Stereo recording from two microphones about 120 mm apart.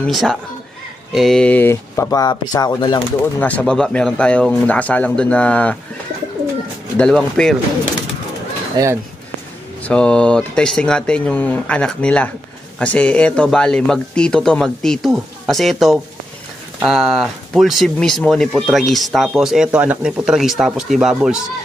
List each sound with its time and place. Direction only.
0.0 s speech: centre (ahead or behind); by 3.0 s 35° left (ahead or behind)
3.3 s speech: 10° left (ahead or behind)
7.0 s speech: 5° left (ahead or behind)
8.8 s speech: 30° right (ahead or behind)
9.8 s speech: 10° left (ahead or behind)